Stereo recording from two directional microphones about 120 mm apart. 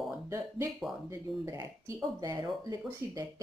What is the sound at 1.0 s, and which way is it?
Speech, 30° right (ahead or behind).